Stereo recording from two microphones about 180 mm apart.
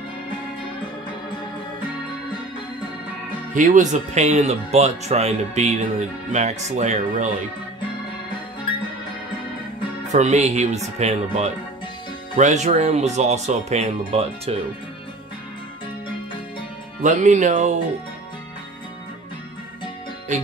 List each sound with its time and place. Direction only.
3.5 s speech: 45° right (ahead or behind)
10.1 s speech: 40° right (ahead or behind)
17.0 s speech: 40° right (ahead or behind)